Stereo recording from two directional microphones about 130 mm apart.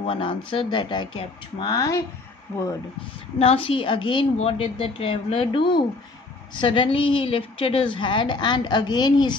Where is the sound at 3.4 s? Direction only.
45° left (ahead or behind).